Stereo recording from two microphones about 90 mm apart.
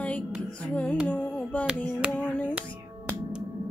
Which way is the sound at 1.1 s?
15° left (ahead or behind).